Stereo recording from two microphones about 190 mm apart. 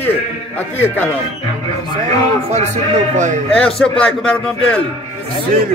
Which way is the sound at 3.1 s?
40° right (ahead or behind).